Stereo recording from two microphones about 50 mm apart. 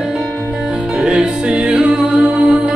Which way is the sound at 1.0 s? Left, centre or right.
Centre.